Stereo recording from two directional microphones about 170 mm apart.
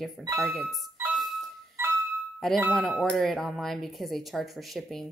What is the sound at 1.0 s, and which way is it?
Music, centre (ahead or behind).